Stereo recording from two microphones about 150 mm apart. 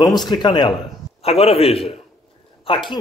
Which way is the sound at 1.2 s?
40° left (ahead or behind).